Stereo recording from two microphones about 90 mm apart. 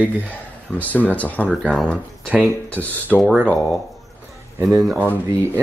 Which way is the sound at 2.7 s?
20° left (ahead or behind).